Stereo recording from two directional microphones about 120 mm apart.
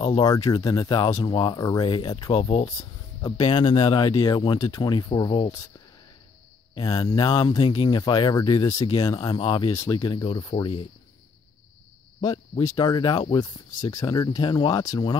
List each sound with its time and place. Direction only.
0.2 s speech: 30° left (ahead or behind)
2.6 s speech: 30° left (ahead or behind)
3.7 s speech: 55° left (ahead or behind)
4.0 s speech: 35° left (ahead or behind)
6.8 s speech: 30° left (ahead or behind)
8.9 s speech: 40° left (ahead or behind)
9.7 s speech: 30° left (ahead or behind)
12.2 s speech: 35° left (ahead or behind)